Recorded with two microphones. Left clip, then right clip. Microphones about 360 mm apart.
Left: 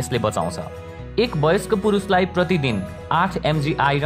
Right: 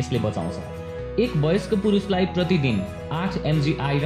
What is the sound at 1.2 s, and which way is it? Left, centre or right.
Speech, left.